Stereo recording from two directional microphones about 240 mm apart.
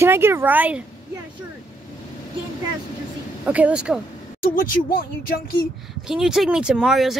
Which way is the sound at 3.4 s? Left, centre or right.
Centre.